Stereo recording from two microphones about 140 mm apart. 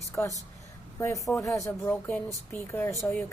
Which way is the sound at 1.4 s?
20° left (ahead or behind).